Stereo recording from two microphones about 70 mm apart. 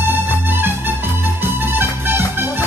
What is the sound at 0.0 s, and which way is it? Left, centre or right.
Music, right.